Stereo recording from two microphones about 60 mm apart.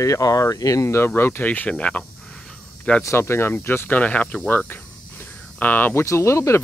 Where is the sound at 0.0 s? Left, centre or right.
Left.